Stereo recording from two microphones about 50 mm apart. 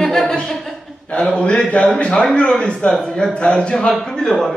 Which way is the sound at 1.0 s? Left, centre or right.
Left.